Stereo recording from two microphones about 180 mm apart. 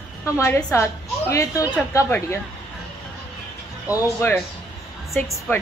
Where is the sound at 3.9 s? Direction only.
20° left (ahead or behind).